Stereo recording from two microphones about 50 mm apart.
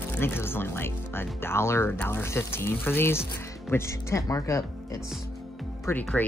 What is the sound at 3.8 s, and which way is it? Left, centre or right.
Speech, left.